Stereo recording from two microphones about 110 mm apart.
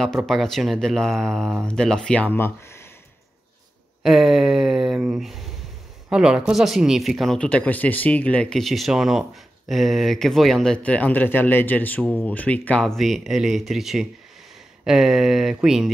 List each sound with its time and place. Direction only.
0.3 s speech: 5° left (ahead or behind); by 2.8 s 20° left (ahead or behind)
4.0 s speech: 5° right (ahead or behind)
7.3 s speech: 10° left (ahead or behind)
12.8 s speech: centre (ahead or behind)